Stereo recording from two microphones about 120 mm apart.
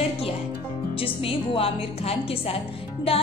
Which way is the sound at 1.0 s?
50° left (ahead or behind).